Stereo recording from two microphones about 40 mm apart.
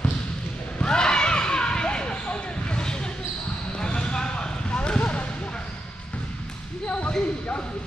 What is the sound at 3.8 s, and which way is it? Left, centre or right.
Basketball bounce, left.